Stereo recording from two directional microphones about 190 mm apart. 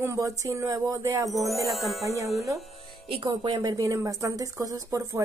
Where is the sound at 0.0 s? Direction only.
15° right (ahead or behind).